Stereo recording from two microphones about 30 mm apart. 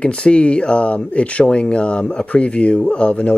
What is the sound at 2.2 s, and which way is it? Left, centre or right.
Speech, left.